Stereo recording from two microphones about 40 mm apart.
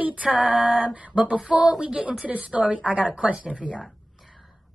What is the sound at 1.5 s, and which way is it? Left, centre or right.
Speech, centre.